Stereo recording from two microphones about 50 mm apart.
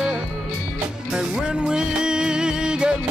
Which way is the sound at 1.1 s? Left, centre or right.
Centre.